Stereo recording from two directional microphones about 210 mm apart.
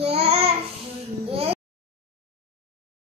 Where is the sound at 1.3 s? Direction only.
25° right (ahead or behind).